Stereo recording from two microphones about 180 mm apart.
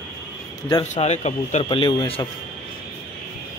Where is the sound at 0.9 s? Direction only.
40° left (ahead or behind).